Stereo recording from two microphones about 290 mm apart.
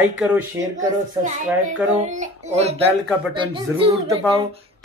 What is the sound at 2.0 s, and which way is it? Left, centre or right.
Speech, right.